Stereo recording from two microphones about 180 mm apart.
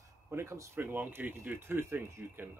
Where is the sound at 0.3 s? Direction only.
15° right (ahead or behind).